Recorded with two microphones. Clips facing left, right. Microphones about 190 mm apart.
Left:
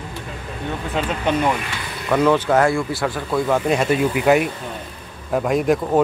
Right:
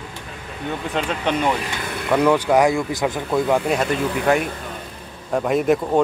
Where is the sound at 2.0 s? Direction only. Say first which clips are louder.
Even; 10° right (ahead or behind).